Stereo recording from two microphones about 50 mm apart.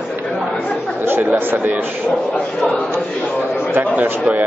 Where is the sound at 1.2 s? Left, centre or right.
Right.